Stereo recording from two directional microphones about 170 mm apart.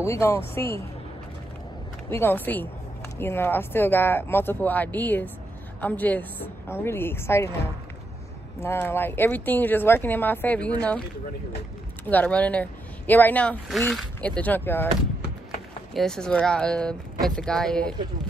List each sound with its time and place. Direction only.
0.0 s speech: 15° left (ahead or behind)
2.0 s speech: 15° left (ahead or behind)
8.5 s speech: 10° left (ahead or behind)
15.9 s speech: centre (ahead or behind)